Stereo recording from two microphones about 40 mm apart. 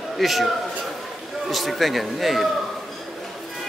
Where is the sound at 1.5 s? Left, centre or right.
Centre.